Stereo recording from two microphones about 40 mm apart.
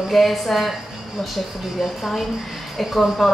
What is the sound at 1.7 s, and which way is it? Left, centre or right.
A woman's voice, centre.